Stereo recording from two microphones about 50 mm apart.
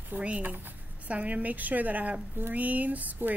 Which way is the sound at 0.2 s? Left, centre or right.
Right.